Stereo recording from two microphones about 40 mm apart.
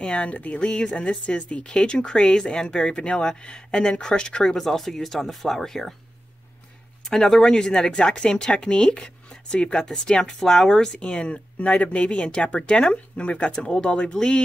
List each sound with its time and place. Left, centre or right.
0.0 s speech: left
4.6 s speech: centre
7.1 s speech: centre
11.0 s speech: left